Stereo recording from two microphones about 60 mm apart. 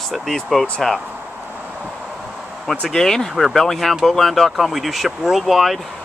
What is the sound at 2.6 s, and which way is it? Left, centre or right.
Speech, centre.